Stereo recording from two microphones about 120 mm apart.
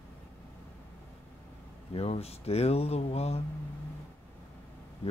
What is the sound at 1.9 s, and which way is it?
Speech, 60° left (ahead or behind).